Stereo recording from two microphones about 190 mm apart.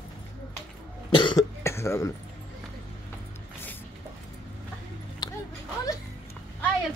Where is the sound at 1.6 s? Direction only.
15° left (ahead or behind).